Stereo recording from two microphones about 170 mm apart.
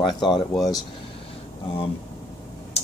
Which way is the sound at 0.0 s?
25° left (ahead or behind).